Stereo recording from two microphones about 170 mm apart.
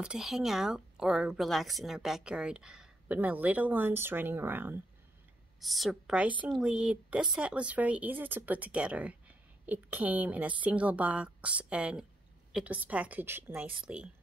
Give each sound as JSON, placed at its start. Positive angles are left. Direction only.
{"t": 0.0, "sound": "a woman's voice", "side_deg": -5}
{"t": 5.6, "sound": "a woman's voice", "side_deg": 0}